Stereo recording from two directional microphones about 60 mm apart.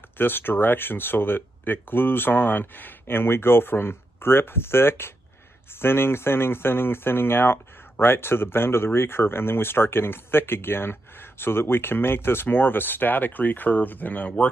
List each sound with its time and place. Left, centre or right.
0.2 s speech: left